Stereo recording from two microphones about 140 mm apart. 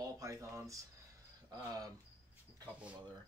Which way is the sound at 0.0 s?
25° right (ahead or behind).